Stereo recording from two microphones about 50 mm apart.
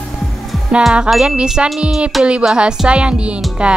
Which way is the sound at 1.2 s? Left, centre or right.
Centre.